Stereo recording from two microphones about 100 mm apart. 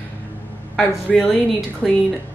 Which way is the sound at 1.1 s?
Centre (ahead or behind).